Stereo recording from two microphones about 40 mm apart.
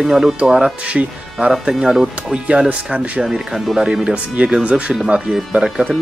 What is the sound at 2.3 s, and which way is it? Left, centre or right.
Speech, right.